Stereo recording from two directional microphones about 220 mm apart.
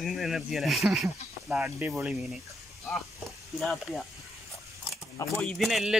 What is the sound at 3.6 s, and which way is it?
Speech, centre (ahead or behind).